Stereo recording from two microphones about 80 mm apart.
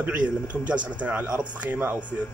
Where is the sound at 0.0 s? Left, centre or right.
Centre.